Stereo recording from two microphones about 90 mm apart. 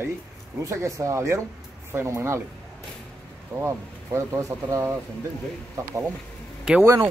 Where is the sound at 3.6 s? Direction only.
35° right (ahead or behind).